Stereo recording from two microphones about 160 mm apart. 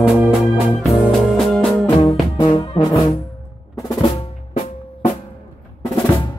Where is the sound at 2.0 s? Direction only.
25° left (ahead or behind).